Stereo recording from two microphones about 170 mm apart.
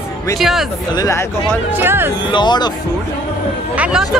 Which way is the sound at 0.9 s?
15° left (ahead or behind).